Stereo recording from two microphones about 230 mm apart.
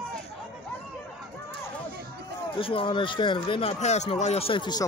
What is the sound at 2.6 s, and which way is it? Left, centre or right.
Speech, left.